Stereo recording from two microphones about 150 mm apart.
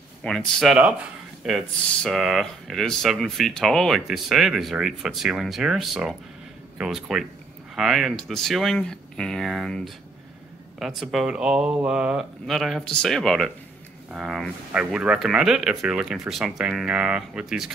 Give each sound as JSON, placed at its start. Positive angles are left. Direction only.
{"t": 0.2, "sound": "speech", "side_deg": 0}